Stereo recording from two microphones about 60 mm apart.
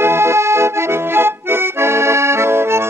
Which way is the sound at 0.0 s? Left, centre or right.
Right.